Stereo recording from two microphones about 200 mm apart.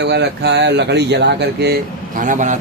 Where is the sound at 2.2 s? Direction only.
40° right (ahead or behind).